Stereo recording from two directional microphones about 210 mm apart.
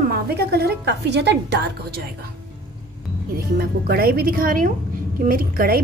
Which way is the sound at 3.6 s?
45° right (ahead or behind).